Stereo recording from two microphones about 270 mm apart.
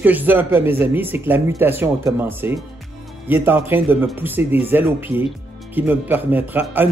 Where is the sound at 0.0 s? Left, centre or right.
Centre.